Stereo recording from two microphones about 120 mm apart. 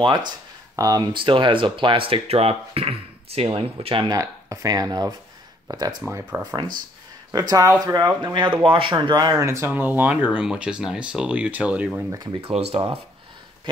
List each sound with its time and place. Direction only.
0.0 s speech: 40° right (ahead or behind)
4.1 s speech: 25° right (ahead or behind)
6.0 s speech: 20° right (ahead or behind)
7.3 s speech: 30° right (ahead or behind)
9.4 s speech: 25° right (ahead or behind)
9.7 s speech: 15° right (ahead or behind)
12.4 s speech: 55° right (ahead or behind)